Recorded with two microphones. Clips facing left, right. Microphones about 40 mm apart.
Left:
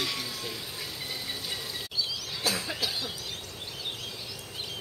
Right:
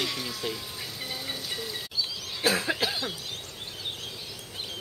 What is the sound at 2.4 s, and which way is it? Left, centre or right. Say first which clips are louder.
Cough: right 6 dB; right.